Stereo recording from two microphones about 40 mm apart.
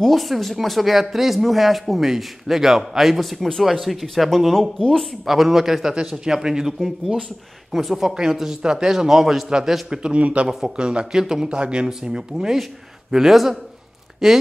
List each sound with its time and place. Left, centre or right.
0.0 s a man's voice: centre
7.7 s a man's voice: centre
9.5 s a man's voice: centre
10.1 s speech: right
11.1 s a man's voice: centre